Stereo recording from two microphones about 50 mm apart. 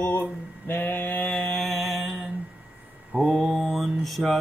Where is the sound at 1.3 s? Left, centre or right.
Left.